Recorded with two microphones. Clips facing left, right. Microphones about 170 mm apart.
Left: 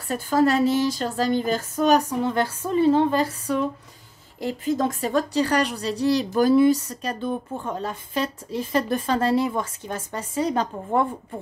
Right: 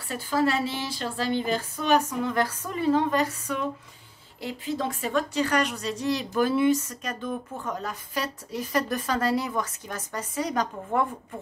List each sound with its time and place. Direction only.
0.1 s speech: 45° left (ahead or behind); by 3.5 s 30° left (ahead or behind)
4.4 s a woman's voice: 45° left (ahead or behind); by 11.1 s 30° left (ahead or behind)